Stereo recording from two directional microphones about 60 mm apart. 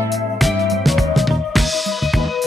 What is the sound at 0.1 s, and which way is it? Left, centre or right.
Music, centre.